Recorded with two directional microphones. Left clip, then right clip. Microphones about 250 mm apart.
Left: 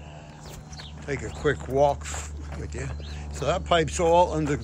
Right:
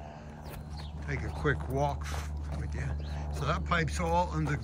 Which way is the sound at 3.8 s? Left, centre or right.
Centre.